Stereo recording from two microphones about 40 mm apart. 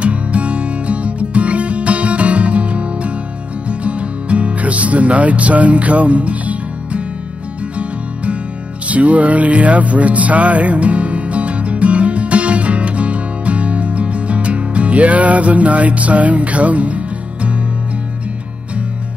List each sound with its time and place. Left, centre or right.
0.0 s music: right